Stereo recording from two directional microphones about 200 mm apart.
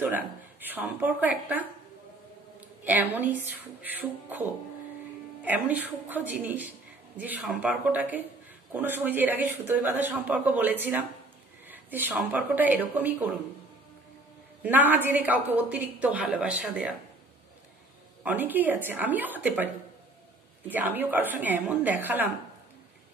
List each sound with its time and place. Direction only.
0.0 s a woman's voice: 10° right (ahead or behind)
2.8 s a woman's voice: 10° right (ahead or behind)
14.6 s a woman's voice: 10° right (ahead or behind)
18.2 s a woman's voice: 10° right (ahead or behind)